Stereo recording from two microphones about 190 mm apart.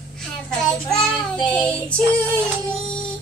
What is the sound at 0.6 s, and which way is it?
Female singing, 5° left (ahead or behind).